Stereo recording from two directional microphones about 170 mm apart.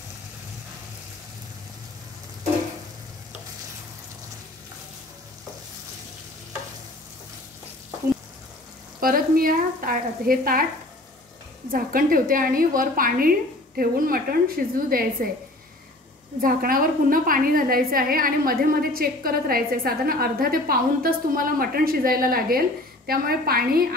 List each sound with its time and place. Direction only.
9.0 s a woman's voice: 55° right (ahead or behind)
11.7 s a woman's voice: 55° right (ahead or behind)
16.3 s a woman's voice: 55° right (ahead or behind)